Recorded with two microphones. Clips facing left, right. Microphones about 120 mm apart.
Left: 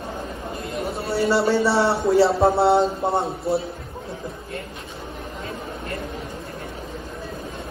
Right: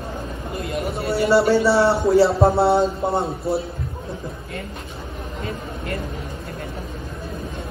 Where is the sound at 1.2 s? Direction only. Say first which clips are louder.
Right 3 dB; 25° left (ahead or behind).